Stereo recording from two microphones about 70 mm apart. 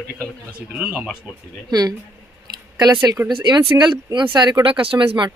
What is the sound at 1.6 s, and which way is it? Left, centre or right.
Speech, right.